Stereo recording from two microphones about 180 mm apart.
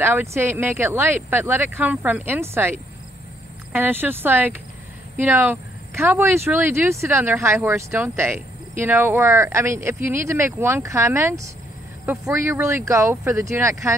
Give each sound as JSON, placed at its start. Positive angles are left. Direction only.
{"t": 0.0, "sound": "speech", "side_deg": -15}
{"t": 3.7, "sound": "speech", "side_deg": -10}